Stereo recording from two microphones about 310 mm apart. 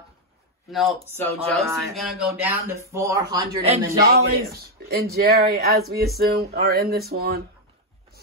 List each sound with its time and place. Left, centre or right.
0.7 s a man's voice: centre
1.7 s speech: centre
3.4 s a man's voice: right